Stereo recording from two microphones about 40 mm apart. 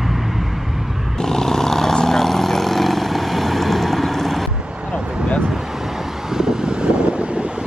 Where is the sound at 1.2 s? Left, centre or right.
Centre.